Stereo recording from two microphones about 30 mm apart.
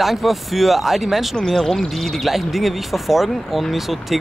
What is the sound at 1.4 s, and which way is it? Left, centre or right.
Speech, centre.